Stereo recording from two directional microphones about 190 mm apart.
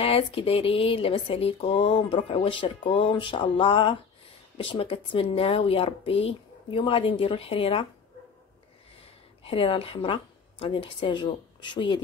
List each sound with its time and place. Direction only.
0.0 s speech: 30° left (ahead or behind)
9.4 s a woman's voice: 30° left (ahead or behind)